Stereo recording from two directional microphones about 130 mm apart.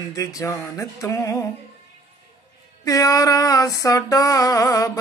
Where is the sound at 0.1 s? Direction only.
25° left (ahead or behind).